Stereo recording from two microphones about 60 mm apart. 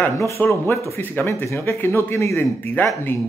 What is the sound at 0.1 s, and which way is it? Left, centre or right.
Speech, left.